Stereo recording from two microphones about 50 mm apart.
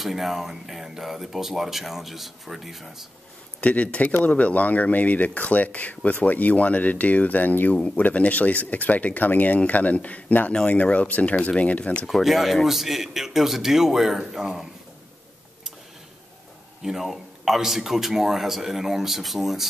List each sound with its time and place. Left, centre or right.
0.0 s speech: centre
3.6 s speech: left
7.7 s speech: left
10.5 s speech: centre
12.1 s speech: centre
16.8 s speech: centre